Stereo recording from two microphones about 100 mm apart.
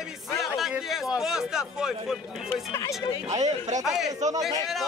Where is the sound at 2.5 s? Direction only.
35° left (ahead or behind).